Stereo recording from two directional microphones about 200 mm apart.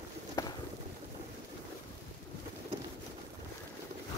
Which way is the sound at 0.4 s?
15° left (ahead or behind).